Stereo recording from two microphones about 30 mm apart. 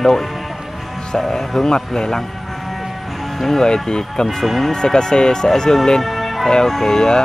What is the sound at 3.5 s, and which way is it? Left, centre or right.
Speech, left.